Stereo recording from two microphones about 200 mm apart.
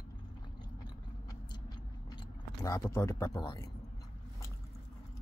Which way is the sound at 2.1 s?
20° left (ahead or behind).